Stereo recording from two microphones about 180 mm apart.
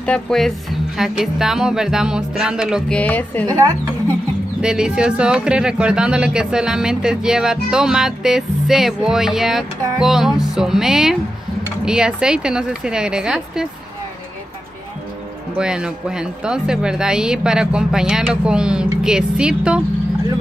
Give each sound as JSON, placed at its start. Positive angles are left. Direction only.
{"t": 0.0, "sound": "speech", "side_deg": 5}
{"t": 3.0, "sound": "a woman's voice", "side_deg": 10}
{"t": 3.4, "sound": "a woman's voice", "side_deg": -20}
{"t": 4.6, "sound": "speech", "side_deg": -5}
{"t": 15.5, "sound": "speech", "side_deg": -5}